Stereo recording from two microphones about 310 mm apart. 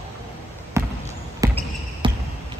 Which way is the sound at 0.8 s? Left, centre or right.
Centre.